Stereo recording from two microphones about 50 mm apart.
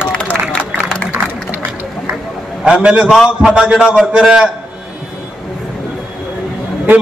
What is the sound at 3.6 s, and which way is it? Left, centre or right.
Speech, centre.